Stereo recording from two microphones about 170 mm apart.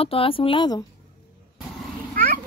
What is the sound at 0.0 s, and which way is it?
Speech, 35° left (ahead or behind).